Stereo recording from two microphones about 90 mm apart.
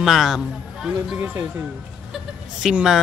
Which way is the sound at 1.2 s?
25° right (ahead or behind).